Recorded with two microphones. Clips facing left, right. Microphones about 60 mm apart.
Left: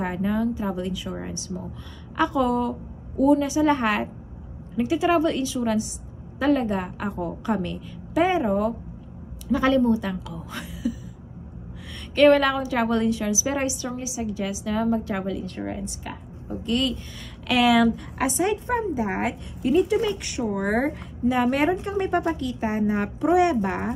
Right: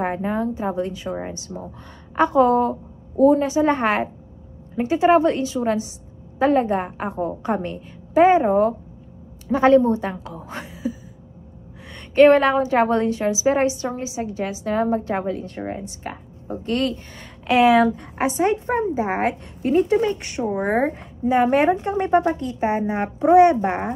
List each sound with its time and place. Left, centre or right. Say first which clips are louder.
0.0 s a woman's voice: right 2 dB; right; by 22.4 s centre
22.4 s a woman's voice: right 3 dB; right